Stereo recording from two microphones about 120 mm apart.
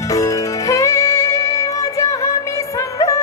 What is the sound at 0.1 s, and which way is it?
Music, 25° left (ahead or behind).